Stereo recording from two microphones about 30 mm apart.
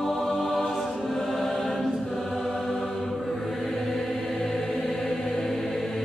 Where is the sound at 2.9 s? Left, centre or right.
Centre.